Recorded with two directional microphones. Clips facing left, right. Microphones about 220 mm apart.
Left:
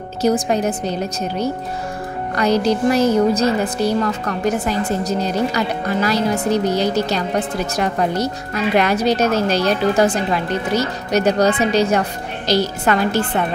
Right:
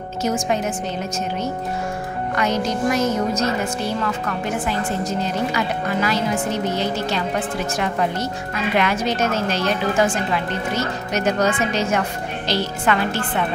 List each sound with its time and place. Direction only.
0.2 s speech: 35° left (ahead or behind)
2.3 s speech: 35° left (ahead or behind)